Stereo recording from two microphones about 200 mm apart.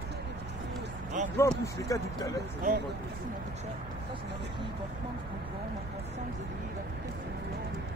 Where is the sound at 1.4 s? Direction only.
10° left (ahead or behind).